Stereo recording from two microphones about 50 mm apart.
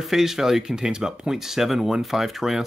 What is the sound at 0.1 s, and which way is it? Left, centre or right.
Speech, centre.